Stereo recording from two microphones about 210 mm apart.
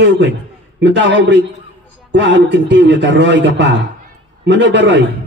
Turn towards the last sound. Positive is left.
turn(degrees=-60)  # may be behind; listen again after turning